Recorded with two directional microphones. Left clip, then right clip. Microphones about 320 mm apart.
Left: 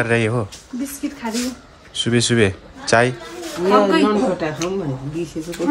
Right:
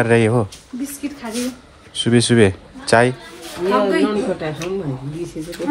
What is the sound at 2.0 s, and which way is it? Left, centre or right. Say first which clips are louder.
A woman's voice: right 3 dB; centre.